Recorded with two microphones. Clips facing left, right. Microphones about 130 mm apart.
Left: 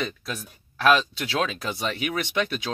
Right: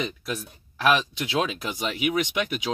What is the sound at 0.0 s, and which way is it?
Speech, 15° right (ahead or behind).